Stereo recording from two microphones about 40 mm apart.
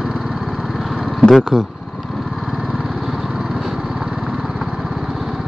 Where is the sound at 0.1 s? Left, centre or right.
Centre.